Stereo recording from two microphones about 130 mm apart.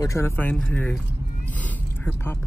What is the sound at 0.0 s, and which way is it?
Speech, 25° left (ahead or behind).